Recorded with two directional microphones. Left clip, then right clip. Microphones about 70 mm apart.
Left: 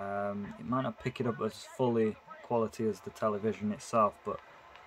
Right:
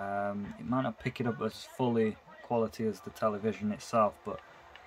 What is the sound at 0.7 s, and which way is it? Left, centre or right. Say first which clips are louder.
Speech: even; left.